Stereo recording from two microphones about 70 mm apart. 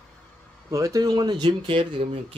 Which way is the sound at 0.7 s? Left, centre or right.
Right.